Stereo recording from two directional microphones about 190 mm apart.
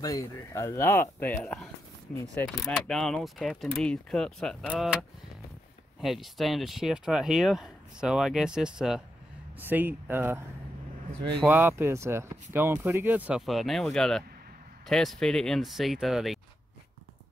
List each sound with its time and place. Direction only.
0.0 s speech: 15° left (ahead or behind); by 10.4 s 10° right (ahead or behind)
11.4 s speech: 10° right (ahead or behind)